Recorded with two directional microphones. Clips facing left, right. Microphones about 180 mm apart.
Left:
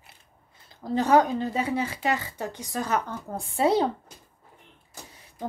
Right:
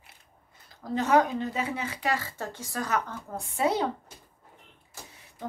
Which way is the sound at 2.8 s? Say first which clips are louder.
Left 2 dB; 30° left (ahead or behind).